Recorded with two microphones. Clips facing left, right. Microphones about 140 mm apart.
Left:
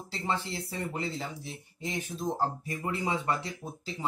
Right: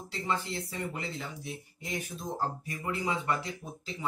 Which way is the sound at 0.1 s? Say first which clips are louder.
Even; 30° left (ahead or behind).